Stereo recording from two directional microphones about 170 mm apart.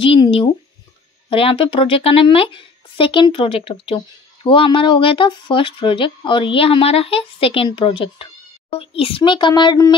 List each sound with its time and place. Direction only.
0.0 s a woman's voice: 30° left (ahead or behind)